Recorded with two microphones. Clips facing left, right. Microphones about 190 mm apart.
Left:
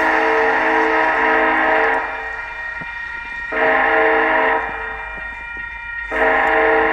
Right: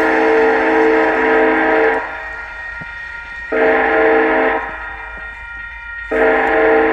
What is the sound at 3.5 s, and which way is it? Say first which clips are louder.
Train: right 5 dB; 65° right (ahead or behind).